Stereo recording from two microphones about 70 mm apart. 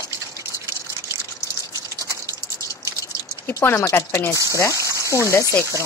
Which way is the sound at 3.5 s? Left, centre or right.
Left.